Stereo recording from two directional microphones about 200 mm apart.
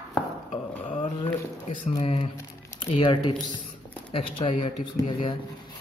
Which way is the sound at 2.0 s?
30° left (ahead or behind).